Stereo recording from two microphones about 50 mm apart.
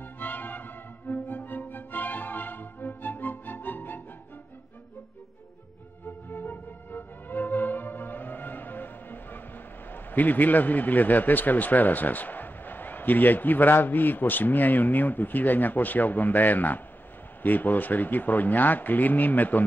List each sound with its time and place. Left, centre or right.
0.0 s music: left
6.2 s music: left
9.8 s a man's voice: left